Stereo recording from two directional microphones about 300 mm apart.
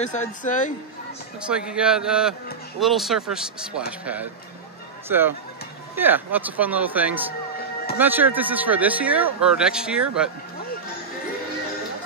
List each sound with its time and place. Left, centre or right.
0.0 s speech: left
1.5 s speech: centre